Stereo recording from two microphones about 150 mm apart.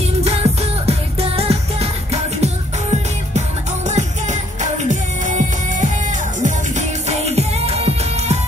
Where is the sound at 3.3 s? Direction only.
50° right (ahead or behind).